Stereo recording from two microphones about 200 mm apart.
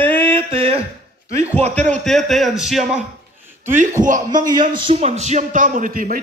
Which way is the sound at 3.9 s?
40° right (ahead or behind).